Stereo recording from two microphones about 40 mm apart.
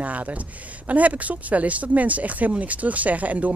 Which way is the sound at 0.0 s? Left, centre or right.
Right.